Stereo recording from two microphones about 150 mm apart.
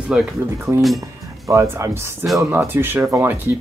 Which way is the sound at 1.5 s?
20° right (ahead or behind).